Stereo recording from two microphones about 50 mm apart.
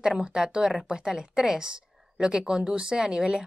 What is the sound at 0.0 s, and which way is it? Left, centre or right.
Speech, centre.